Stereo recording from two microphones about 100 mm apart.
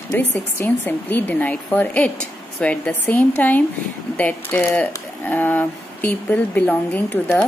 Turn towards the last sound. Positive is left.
turn(degrees=15)  # may be behind; listen again after turning